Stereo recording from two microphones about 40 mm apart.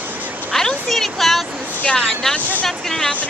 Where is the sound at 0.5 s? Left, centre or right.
Centre.